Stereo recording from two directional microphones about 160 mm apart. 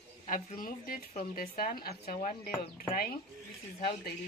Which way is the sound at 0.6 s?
60° left (ahead or behind).